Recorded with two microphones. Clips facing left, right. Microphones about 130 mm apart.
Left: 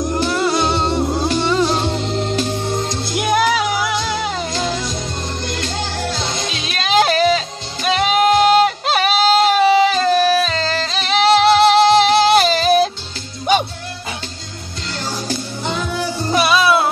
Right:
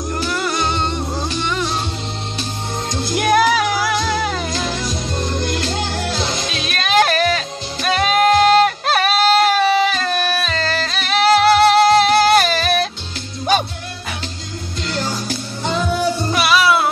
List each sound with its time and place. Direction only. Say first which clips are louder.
0.1 s music: left 2 dB; 25° left (ahead or behind)
3.2 s music: right 2 dB; 15° left (ahead or behind)
6.5 s music: left 1 dB; 20° left (ahead or behind)
16.3 s music: left 3 dB; 20° left (ahead or behind)